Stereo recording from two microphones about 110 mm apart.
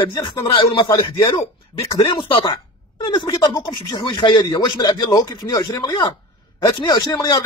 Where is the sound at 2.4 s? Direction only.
50° left (ahead or behind).